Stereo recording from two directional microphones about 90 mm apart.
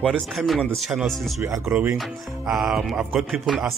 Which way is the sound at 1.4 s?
30° right (ahead or behind).